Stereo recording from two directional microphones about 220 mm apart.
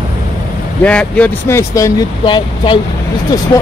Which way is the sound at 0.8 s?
5° left (ahead or behind).